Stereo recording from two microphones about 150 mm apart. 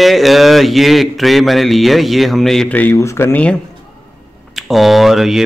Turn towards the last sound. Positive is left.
turn(degrees=-5)  # may be behind; listen again after turning